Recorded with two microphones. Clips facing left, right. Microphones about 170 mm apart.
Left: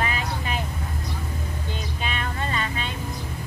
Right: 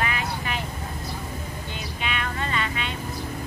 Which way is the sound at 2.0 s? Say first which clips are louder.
Right 2 dB; 30° left (ahead or behind).